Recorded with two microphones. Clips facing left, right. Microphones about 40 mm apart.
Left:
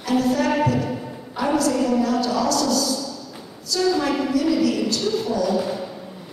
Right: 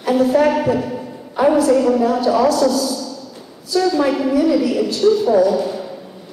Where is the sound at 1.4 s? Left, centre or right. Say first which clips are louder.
Right 9 dB; right.